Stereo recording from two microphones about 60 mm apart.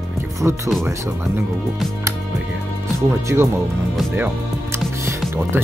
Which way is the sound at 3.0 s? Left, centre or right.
Right.